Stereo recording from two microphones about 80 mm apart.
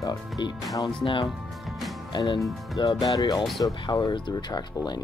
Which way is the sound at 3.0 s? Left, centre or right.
Left.